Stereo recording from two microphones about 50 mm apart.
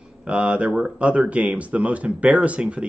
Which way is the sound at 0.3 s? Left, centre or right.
Right.